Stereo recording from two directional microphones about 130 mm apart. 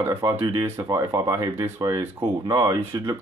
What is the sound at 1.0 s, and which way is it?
Speech, 30° right (ahead or behind).